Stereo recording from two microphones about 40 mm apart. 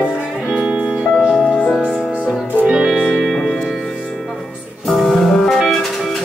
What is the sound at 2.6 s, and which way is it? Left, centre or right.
Music, right.